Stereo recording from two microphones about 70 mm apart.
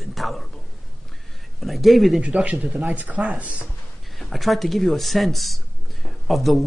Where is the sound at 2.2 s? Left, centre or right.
Centre.